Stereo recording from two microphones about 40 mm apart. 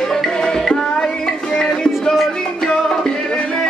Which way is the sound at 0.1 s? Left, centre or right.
Centre.